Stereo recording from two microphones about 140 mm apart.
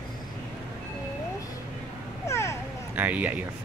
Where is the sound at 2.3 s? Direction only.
20° left (ahead or behind).